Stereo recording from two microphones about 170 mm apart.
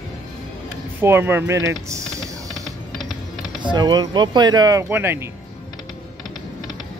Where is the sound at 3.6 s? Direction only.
25° right (ahead or behind).